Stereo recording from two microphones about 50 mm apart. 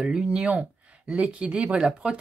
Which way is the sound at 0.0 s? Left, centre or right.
Centre.